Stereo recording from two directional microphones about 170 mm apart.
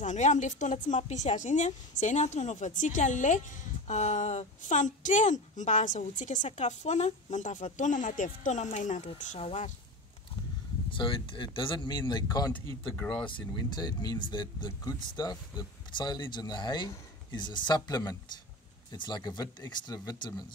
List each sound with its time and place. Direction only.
0.0 s a woman's voice: 45° left (ahead or behind)
10.9 s speech: 30° left (ahead or behind); by 13.2 s 10° left (ahead or behind)
13.2 s speech: 25° left (ahead or behind)